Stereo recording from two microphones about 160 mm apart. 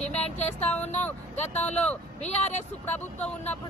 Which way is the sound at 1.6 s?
10° left (ahead or behind).